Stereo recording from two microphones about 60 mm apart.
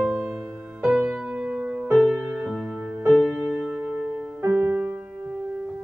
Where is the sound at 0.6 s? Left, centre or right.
Right.